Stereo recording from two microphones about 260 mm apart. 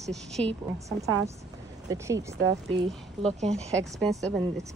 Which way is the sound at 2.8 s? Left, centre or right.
Right.